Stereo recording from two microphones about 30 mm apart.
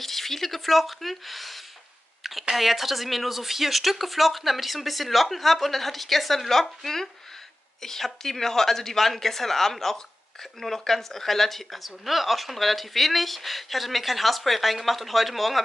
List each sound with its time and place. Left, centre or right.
0.0 s a woman's voice: centre